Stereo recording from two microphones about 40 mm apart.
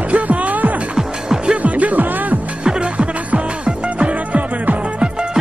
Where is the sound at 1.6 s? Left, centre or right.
Right.